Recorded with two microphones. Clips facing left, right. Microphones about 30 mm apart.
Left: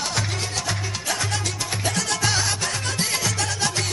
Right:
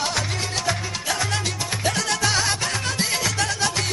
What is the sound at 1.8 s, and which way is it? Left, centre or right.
Music, centre.